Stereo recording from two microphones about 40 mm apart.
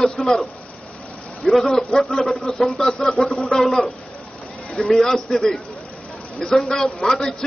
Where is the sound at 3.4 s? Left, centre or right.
Centre.